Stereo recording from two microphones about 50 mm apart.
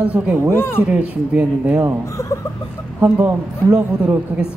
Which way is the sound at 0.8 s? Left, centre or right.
Right.